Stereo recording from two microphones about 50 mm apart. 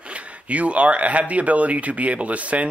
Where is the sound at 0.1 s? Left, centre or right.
Right.